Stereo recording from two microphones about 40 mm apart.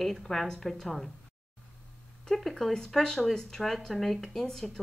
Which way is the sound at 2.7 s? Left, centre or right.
Centre.